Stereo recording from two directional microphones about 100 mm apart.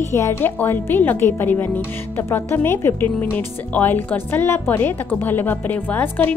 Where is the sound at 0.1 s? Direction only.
25° left (ahead or behind).